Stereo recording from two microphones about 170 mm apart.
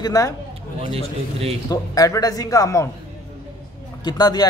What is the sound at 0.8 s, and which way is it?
Speech, 35° right (ahead or behind).